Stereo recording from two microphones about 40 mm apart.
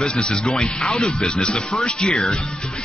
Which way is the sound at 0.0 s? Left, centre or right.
Left.